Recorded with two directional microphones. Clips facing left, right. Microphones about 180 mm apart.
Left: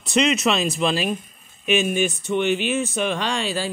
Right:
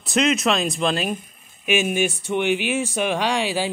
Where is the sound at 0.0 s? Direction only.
Centre (ahead or behind).